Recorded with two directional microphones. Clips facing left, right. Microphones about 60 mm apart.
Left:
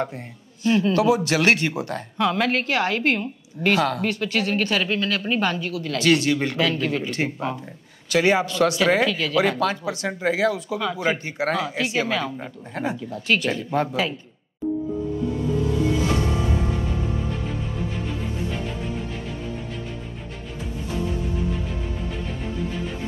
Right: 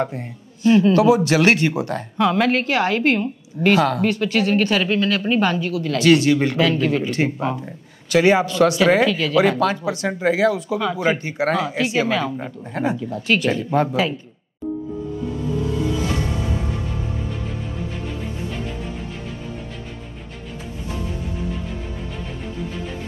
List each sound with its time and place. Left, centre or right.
0.7 s speech: right